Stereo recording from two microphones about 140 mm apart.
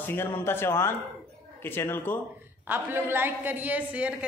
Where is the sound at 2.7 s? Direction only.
15° right (ahead or behind).